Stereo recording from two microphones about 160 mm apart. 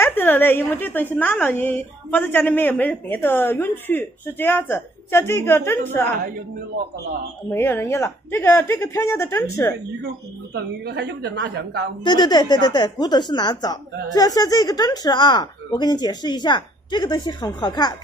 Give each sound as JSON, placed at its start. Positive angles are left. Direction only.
{"t": 0.0, "sound": "a woman's voice", "side_deg": 15}
{"t": 7.5, "sound": "a woman's voice", "side_deg": 15}
{"t": 10.0, "sound": "a woman's voice", "side_deg": -90}
{"t": 12.0, "sound": "a woman's voice", "side_deg": 25}